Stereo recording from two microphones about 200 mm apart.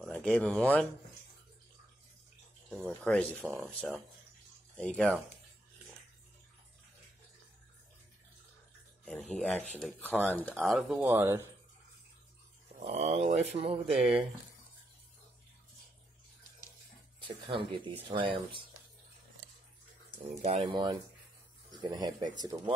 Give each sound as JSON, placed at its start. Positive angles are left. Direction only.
{"t": 0.0, "sound": "speech", "side_deg": 5}
{"t": 3.1, "sound": "speech", "side_deg": 5}
{"t": 9.0, "sound": "speech", "side_deg": 5}
{"t": 12.7, "sound": "speech", "side_deg": -35}
{"t": 17.5, "sound": "speech", "side_deg": -25}
{"t": 20.2, "sound": "speech", "side_deg": -25}